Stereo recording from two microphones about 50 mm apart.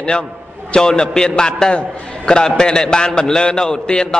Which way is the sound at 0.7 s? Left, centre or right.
Centre.